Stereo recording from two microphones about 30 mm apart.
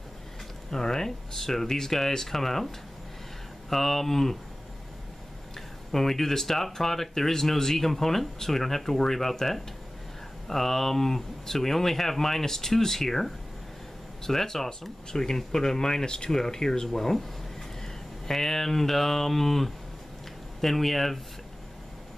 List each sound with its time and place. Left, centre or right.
0.7 s speech: centre
3.7 s speech: centre
5.9 s speech: centre